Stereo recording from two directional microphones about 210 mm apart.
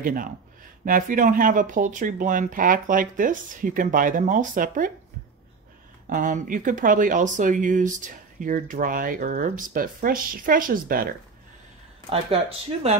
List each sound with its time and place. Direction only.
0.0 s speech: 40° right (ahead or behind)
6.0 s speech: 40° right (ahead or behind)
12.1 s speech: 25° right (ahead or behind)